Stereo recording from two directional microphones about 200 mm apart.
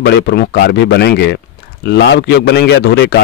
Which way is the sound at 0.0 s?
55° left (ahead or behind).